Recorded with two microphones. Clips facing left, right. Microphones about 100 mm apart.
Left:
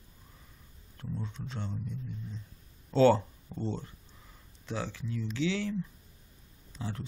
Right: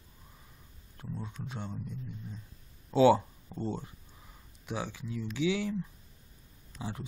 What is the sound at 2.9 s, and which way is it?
Speech, 10° right (ahead or behind).